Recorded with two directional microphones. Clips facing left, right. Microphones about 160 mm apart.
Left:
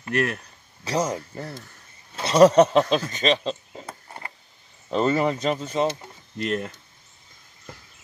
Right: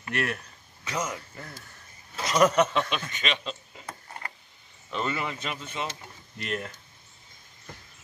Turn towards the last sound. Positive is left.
turn(degrees=35)  # may be behind; listen again after turning